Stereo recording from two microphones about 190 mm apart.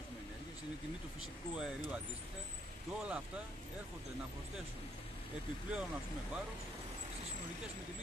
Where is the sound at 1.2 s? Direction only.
5° right (ahead or behind).